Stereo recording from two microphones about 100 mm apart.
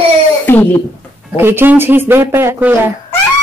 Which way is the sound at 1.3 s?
20° right (ahead or behind).